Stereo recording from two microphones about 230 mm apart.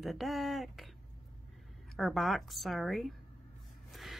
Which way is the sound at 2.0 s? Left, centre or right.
Centre.